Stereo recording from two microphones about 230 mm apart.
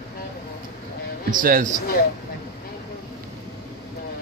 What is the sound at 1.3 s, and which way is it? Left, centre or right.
Speech, right.